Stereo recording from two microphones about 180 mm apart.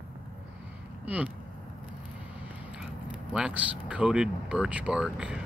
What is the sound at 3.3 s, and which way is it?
Speech, 5° right (ahead or behind).